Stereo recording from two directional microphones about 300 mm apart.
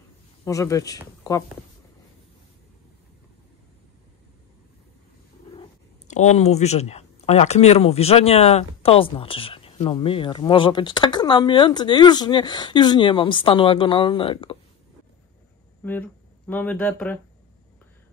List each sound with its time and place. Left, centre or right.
0.5 s speech: centre
5.6 s speech: left
15.8 s speech: centre